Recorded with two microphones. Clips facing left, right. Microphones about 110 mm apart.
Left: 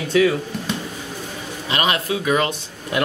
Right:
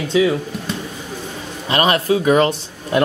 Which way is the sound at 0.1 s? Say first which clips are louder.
Right 1 dB; 20° right (ahead or behind).